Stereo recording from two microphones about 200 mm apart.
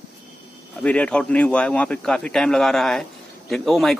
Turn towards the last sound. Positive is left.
turn(degrees=0)  # may be behind; listen again after turning